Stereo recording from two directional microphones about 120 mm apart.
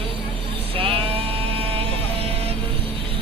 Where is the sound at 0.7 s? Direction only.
50° right (ahead or behind).